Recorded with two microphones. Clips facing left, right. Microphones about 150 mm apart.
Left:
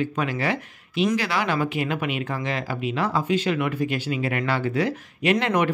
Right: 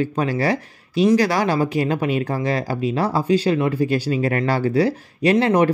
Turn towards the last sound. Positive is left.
turn(degrees=-35)  # may be behind; listen again after turning